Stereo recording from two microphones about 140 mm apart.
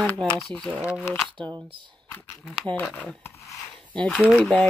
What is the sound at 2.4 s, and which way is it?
Speech, 5° left (ahead or behind).